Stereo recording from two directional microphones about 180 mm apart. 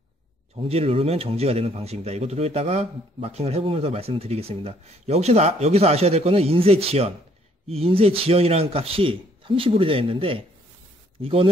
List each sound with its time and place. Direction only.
0.6 s a man's voice: 35° right (ahead or behind)